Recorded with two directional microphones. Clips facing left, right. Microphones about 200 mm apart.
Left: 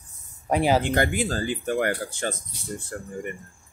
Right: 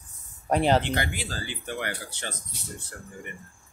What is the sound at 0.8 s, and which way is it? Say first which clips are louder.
Speech: left 7 dB; 50° left (ahead or behind).